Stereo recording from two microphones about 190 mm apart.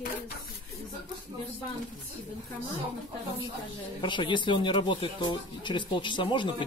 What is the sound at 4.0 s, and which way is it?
Speech, 25° left (ahead or behind).